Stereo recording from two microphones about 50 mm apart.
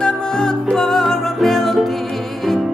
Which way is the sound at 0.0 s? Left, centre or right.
Centre.